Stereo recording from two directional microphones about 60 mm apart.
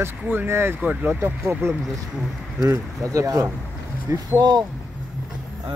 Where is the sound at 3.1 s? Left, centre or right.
Right.